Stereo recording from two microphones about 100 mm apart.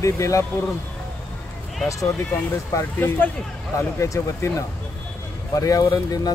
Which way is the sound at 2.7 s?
25° left (ahead or behind).